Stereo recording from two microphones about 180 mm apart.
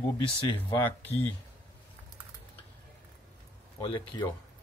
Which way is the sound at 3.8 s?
25° left (ahead or behind).